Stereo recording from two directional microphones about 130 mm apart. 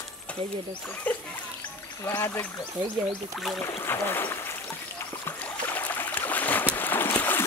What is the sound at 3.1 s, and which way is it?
Speech, centre (ahead or behind).